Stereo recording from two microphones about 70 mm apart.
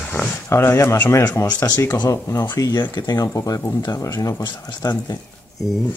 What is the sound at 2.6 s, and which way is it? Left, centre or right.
Speech, left.